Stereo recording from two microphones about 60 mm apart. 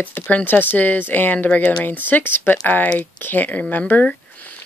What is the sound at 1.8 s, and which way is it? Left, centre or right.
Speech, left.